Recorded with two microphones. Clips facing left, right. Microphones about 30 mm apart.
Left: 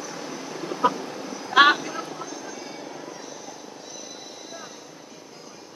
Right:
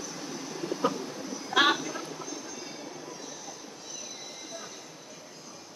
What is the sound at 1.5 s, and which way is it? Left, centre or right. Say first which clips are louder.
Vehicle: left 7 dB; left.